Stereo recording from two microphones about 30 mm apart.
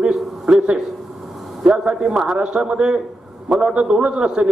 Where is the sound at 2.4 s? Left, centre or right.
Right.